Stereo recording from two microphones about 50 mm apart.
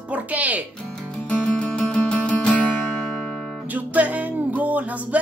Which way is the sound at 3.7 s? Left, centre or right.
Right.